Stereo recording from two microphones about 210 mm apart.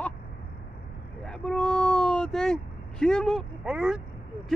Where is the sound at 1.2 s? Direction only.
5° left (ahead or behind).